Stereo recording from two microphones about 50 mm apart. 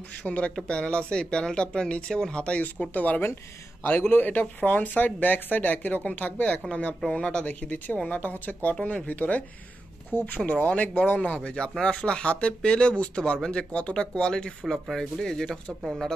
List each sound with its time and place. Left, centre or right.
0.2 s speech: left
3.8 s speech: left; by 7.4 s centre
7.4 s speech: left; by 15.6 s centre